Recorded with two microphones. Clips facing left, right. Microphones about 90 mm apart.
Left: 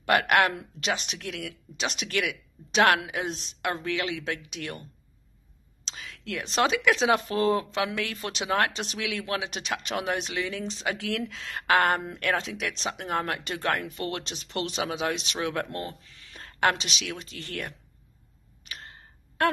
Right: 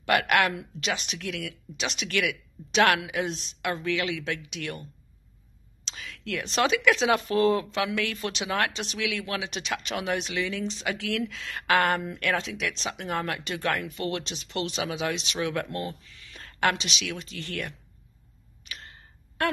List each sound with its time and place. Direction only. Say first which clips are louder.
0.0 s speech: left 1 dB; 35° left (ahead or behind)
5.9 s speech: right 2 dB; 30° left (ahead or behind)
18.7 s a sound: left 1 dB; 35° left (ahead or behind)